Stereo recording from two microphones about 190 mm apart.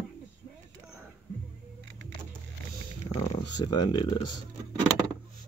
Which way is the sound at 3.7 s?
20° left (ahead or behind).